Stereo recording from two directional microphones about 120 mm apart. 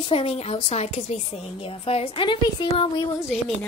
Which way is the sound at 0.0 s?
55° left (ahead or behind).